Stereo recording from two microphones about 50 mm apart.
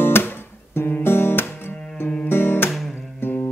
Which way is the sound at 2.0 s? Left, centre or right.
Left.